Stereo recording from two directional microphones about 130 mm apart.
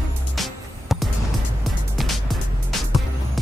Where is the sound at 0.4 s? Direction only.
Centre (ahead or behind).